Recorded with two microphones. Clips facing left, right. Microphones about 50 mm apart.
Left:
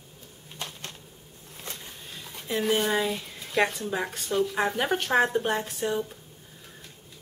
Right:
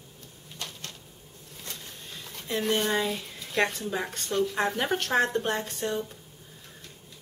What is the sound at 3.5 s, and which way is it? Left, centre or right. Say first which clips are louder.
Speech: left 2 dB; centre.